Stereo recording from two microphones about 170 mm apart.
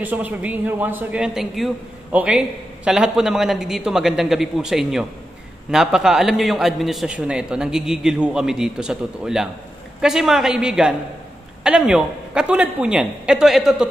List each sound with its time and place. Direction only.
0.0 s a man's voice: 10° right (ahead or behind)